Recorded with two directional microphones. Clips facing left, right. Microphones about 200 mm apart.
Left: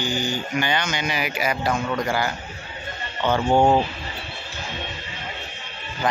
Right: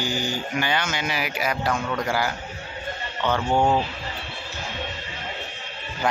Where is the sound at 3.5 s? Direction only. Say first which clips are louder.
Left 4 dB; 30° left (ahead or behind).